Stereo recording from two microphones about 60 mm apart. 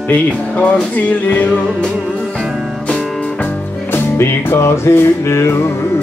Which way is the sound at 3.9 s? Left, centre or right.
Left.